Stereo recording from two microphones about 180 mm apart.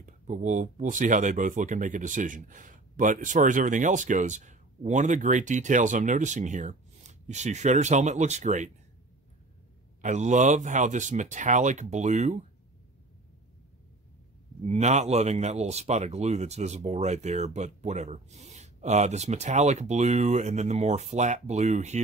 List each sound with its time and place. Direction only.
0.0 s speech: 45° right (ahead or behind)
10.0 s speech: 40° right (ahead or behind)
14.7 s speech: 40° right (ahead or behind)